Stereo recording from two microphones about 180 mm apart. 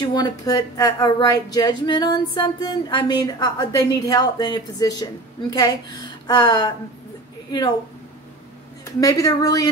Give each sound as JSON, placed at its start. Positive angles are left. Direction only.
{"t": 0.0, "sound": "speech", "side_deg": 25}
{"t": 8.8, "sound": "speech", "side_deg": 20}